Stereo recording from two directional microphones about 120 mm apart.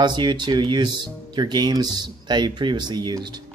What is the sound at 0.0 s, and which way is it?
Speech, 40° right (ahead or behind).